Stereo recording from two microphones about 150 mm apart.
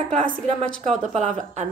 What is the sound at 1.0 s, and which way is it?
Speech, 55° right (ahead or behind).